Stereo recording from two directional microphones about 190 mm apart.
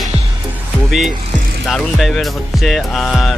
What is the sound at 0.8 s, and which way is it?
Music, centre (ahead or behind).